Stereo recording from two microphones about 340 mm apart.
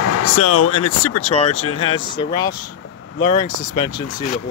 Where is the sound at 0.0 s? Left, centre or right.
Left.